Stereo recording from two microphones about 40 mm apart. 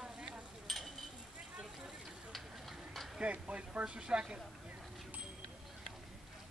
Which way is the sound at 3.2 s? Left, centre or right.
Right.